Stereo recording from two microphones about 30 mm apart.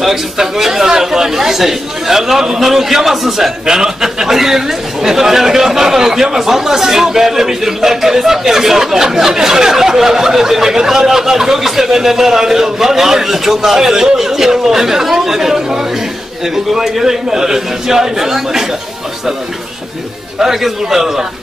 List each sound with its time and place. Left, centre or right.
0.0 s a man's voice: centre
3.6 s a man's voice: centre
20.3 s a man's voice: centre